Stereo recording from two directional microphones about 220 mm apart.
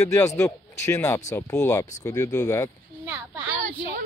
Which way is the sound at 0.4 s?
10° left (ahead or behind).